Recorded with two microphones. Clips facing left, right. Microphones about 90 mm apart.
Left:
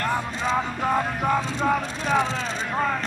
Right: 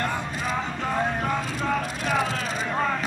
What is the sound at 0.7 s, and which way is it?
Music, 15° left (ahead or behind).